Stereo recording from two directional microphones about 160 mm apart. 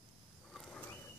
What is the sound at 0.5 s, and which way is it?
Wild animals, 5° left (ahead or behind).